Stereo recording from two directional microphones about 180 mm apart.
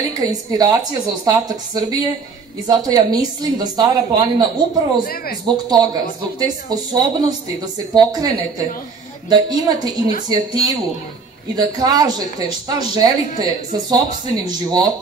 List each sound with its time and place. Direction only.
0.2 s a woman's voice: 20° right (ahead or behind)